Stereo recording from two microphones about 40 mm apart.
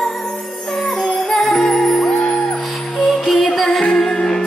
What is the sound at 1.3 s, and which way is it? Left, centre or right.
Music, centre.